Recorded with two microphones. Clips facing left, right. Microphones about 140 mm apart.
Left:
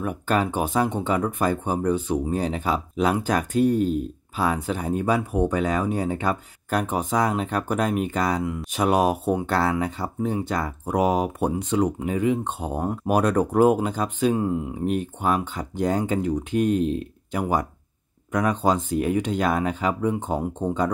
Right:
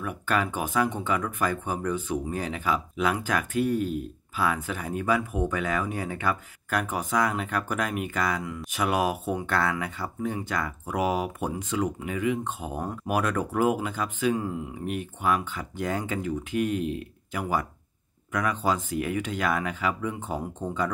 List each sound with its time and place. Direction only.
0.0 s speech: 30° left (ahead or behind)